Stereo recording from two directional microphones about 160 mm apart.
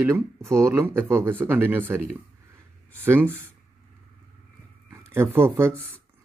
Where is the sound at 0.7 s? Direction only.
15° right (ahead or behind).